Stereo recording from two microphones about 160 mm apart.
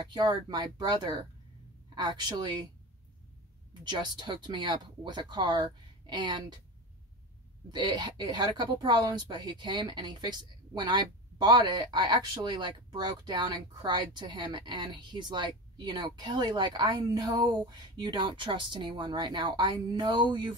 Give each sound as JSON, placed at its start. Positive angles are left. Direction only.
{"t": 0.1, "sound": "speech", "side_deg": -30}
{"t": 3.8, "sound": "speech", "side_deg": -30}
{"t": 7.7, "sound": "speech", "side_deg": -25}